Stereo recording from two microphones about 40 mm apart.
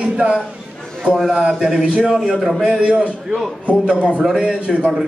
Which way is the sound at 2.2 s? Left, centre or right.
Centre.